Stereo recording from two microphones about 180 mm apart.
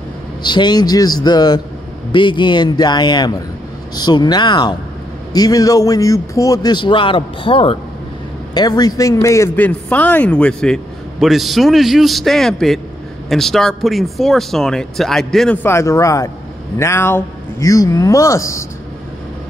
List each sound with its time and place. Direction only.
0.4 s a man's voice: 25° left (ahead or behind)